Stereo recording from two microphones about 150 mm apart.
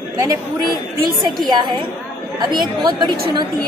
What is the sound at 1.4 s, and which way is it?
A woman's voice, 30° right (ahead or behind).